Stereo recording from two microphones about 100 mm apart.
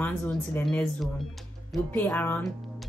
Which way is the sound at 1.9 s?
15° left (ahead or behind).